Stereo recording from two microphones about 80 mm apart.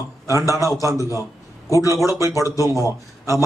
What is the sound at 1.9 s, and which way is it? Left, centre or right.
A man's voice, left.